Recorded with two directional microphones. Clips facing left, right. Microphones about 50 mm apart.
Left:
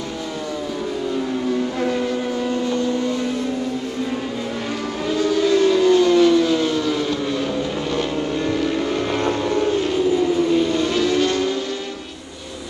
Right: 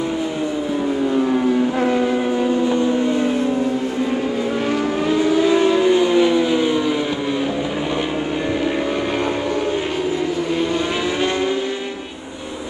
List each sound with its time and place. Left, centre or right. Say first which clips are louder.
5.1 s vehicle: right 1 dB; right
10.8 s vehicle: left 2 dB; centre